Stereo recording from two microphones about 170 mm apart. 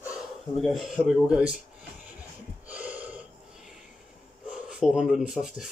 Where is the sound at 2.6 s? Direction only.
10° right (ahead or behind).